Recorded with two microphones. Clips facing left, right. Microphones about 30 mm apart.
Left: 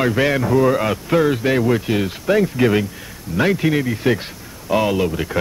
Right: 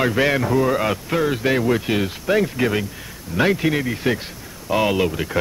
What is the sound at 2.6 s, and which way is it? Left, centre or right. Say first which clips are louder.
Speech: left 4 dB; centre.